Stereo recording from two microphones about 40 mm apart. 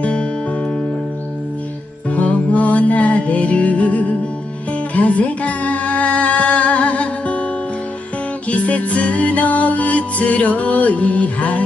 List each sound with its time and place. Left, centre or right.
0.0 s music: left
2.0 s music: left
8.5 s music: left